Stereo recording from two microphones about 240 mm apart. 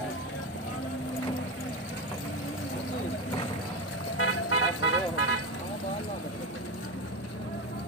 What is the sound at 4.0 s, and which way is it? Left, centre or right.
Vehicle, left.